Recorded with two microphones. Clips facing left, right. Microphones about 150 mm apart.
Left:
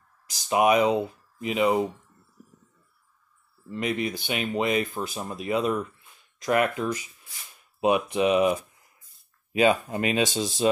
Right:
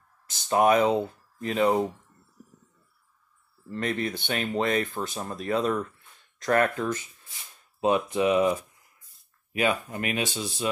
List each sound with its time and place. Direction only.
0.5 s speech: 10° left (ahead or behind)
3.6 s speech: 10° left (ahead or behind); by 10.8 s 25° left (ahead or behind)